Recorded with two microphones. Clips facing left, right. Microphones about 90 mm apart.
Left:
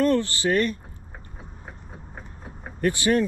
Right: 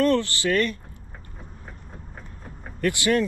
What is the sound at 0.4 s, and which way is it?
Speech, 30° left (ahead or behind).